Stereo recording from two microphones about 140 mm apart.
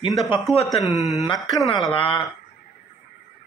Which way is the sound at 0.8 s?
Centre (ahead or behind).